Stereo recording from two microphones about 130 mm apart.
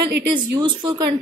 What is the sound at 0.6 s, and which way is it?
Speech, 40° right (ahead or behind).